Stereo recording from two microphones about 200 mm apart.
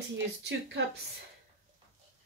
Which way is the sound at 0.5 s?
65° right (ahead or behind).